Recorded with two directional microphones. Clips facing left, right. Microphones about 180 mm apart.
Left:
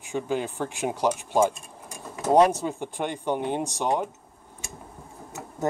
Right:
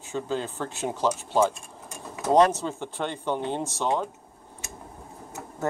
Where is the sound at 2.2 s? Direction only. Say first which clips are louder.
Left 1 dB; 10° left (ahead or behind).